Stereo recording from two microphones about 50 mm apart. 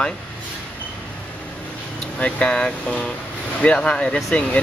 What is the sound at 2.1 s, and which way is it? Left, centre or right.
Speech, left.